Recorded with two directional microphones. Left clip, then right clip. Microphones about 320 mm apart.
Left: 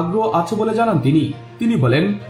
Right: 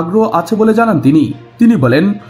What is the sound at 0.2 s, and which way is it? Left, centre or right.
Speech, right.